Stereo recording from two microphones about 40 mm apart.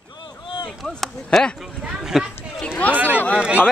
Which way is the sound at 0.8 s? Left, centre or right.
Centre.